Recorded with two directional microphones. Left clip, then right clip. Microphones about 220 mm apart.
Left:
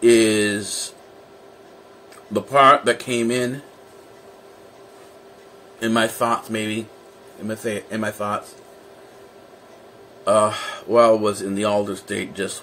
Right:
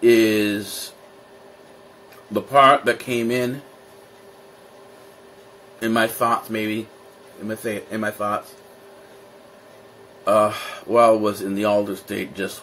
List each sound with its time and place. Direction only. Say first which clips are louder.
0.0 s a sound: left 1 dB; 10° left (ahead or behind)
2.3 s speech: even; 10° left (ahead or behind)
5.8 s speech: even; 10° left (ahead or behind)
10.2 s speech: even; 10° left (ahead or behind)